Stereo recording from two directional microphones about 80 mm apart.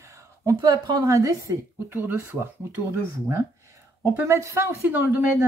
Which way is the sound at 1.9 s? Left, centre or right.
Right.